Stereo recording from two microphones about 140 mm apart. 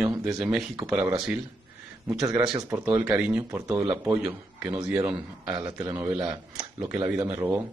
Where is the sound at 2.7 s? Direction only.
15° right (ahead or behind).